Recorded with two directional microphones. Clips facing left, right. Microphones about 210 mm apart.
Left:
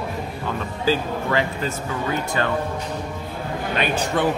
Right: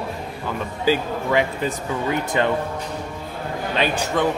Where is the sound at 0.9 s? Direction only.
15° right (ahead or behind).